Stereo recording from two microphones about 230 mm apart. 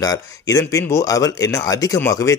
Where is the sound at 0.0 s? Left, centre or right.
Centre.